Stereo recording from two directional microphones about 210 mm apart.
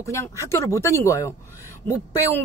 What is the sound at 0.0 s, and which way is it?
Speech, 15° left (ahead or behind).